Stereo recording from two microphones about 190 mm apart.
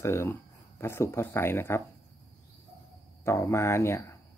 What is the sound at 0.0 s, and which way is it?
Speech, 15° left (ahead or behind).